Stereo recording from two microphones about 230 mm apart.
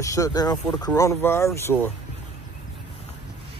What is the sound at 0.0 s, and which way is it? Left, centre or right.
Speech, centre.